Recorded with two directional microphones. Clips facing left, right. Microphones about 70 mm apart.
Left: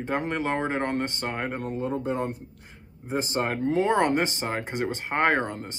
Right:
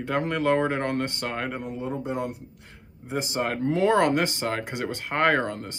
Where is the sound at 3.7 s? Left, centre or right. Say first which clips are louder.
Right 2 dB; left.